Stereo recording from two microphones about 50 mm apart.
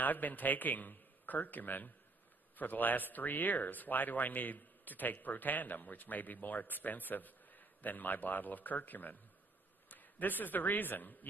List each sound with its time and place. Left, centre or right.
0.0 s a man's voice: left